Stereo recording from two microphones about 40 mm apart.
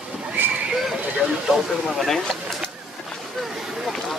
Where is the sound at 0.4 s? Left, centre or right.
Right.